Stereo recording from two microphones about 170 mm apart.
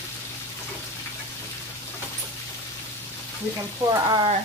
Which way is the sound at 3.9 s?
25° right (ahead or behind).